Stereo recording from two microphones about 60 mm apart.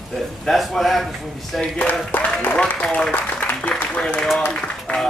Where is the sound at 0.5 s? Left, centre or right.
Centre.